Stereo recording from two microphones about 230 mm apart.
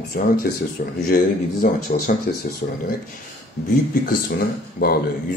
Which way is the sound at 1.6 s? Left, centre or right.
Left.